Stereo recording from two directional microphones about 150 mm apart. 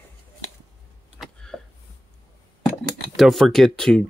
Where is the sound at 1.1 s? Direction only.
5° left (ahead or behind).